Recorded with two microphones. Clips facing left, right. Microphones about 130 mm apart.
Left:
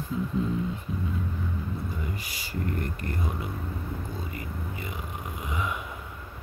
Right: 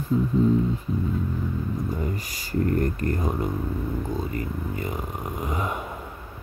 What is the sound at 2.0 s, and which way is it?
Speech, 40° right (ahead or behind).